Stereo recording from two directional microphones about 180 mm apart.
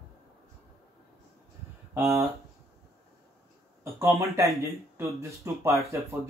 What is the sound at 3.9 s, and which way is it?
Speech, 15° right (ahead or behind).